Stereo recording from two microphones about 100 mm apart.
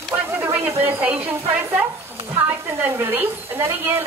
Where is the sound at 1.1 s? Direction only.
15° right (ahead or behind).